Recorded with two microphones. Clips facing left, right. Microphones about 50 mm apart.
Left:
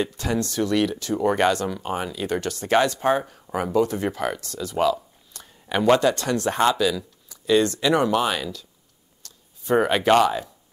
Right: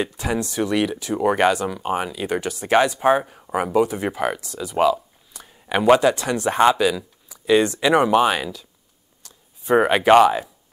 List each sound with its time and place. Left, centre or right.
0.0 s speech: centre